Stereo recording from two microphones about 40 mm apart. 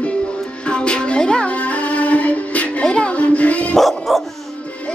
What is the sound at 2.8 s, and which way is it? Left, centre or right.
Music, left.